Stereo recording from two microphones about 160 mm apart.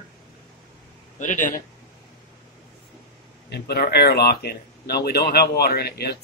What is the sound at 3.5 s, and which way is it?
Speech, 90° left.